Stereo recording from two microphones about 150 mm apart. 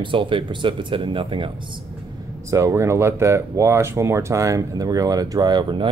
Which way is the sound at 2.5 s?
20° right (ahead or behind).